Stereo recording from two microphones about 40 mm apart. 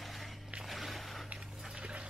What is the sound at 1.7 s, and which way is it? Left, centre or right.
Dog, right.